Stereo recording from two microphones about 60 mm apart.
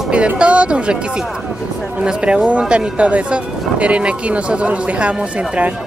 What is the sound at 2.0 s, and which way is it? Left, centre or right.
Speech, centre.